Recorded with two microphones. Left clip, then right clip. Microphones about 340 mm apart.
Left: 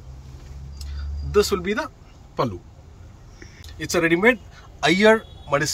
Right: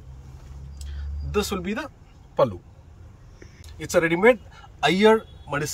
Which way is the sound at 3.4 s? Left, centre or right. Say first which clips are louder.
Left 4 dB; centre.